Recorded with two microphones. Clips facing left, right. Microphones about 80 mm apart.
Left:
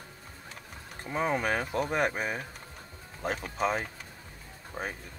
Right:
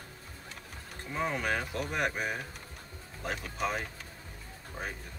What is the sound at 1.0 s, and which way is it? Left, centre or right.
Speech, left.